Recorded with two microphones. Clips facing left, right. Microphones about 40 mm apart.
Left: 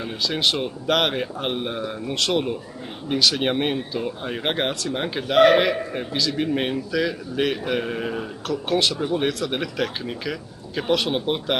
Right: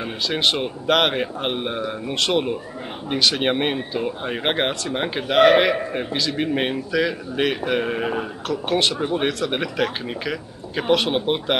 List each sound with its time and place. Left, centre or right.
0.0 s speech: centre